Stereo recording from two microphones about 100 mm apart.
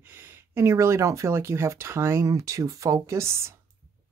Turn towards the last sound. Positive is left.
turn(degrees=-25)  # may be behind; listen again after turning